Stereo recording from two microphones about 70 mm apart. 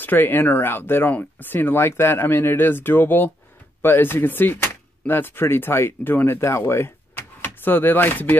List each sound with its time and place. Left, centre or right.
0.0 s speech: left